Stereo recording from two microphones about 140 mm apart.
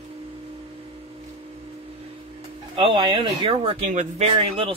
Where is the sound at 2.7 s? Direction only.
35° right (ahead or behind); by 4.3 s 55° right (ahead or behind).